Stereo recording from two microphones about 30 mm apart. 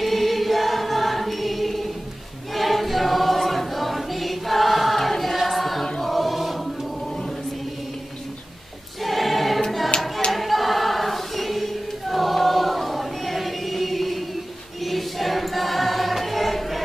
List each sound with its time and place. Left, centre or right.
0.0 s choir: centre
9.0 s choir: centre
9.9 s clapping: left
10.3 s choir: centre